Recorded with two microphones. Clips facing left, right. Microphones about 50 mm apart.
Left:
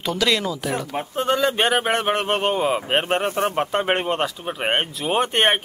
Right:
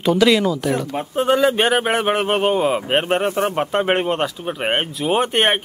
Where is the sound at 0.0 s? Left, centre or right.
Centre.